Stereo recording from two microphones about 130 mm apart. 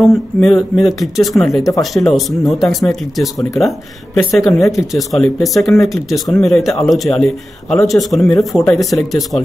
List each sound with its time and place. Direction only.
0.0 s speech: centre (ahead or behind)